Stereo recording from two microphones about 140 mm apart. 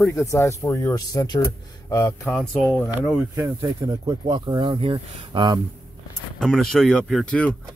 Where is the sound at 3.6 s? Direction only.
25° right (ahead or behind).